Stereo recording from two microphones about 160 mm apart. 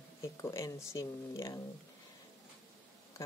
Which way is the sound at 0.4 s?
20° left (ahead or behind).